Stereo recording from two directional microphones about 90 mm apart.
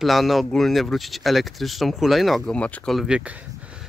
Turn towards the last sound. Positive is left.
turn(degrees=-10)  # may be behind; listen again after turning